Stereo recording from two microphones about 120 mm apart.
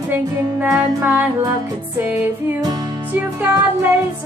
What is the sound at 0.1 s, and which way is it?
Music, 15° right (ahead or behind).